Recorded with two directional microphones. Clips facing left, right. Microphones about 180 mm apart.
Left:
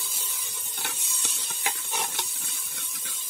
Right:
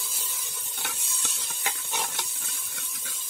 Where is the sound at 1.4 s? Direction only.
Centre (ahead or behind).